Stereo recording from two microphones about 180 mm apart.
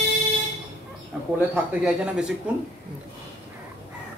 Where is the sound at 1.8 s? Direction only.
5° right (ahead or behind).